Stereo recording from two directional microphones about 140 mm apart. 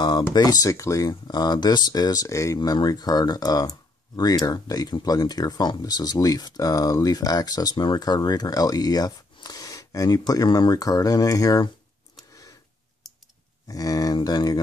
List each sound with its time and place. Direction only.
0.3 s speech: 30° left (ahead or behind)
13.0 s clicking: centre (ahead or behind)
13.7 s speech: 25° left (ahead or behind)